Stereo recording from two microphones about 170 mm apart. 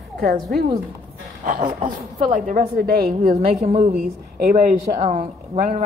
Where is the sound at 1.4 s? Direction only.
50° right (ahead or behind).